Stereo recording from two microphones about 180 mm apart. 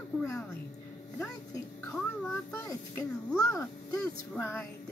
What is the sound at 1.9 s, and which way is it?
A child's voice, 10° left (ahead or behind).